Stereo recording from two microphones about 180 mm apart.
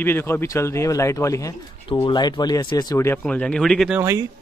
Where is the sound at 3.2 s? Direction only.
5° left (ahead or behind).